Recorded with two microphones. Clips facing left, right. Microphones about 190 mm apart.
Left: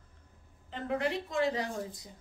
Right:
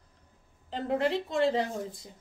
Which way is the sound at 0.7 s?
30° right (ahead or behind).